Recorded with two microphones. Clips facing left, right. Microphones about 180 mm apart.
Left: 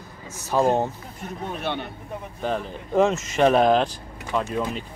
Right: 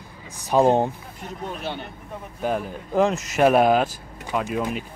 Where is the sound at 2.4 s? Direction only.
10° right (ahead or behind).